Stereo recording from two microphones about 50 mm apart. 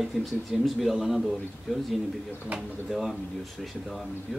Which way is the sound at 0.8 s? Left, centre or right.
Centre.